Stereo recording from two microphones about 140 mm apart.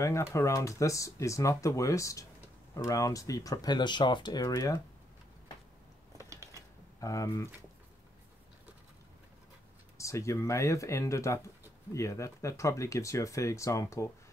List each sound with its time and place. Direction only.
0.0 s speech: 20° left (ahead or behind)
6.3 s mechanisms: 20° right (ahead or behind)
7.0 s speech: 20° left (ahead or behind)
9.9 s speech: 20° left (ahead or behind)